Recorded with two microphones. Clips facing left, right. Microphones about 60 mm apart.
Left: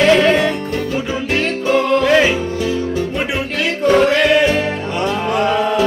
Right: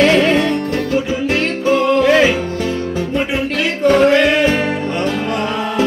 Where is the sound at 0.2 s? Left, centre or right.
Centre.